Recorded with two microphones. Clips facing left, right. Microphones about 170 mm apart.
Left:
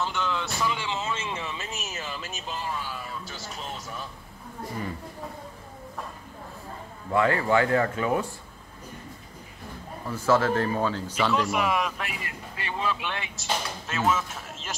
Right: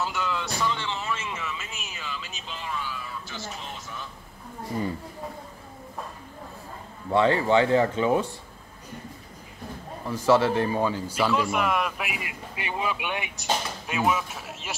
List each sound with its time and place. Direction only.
0.0 s vehicle: centre (ahead or behind)
0.7 s a sound: 20° left (ahead or behind); by 2.7 s 45° left (ahead or behind)
7.1 s speech: 25° right (ahead or behind)
10.0 s speech: 15° right (ahead or behind)
12.0 s speech: 10° right (ahead or behind)